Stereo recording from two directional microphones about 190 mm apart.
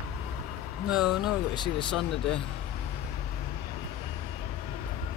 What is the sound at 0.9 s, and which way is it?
Speech, 5° right (ahead or behind).